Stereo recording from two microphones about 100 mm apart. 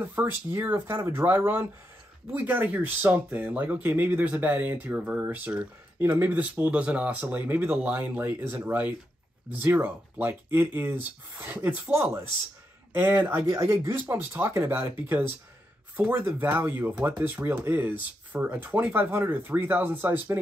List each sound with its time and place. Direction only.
0.0 s speech: 20° right (ahead or behind)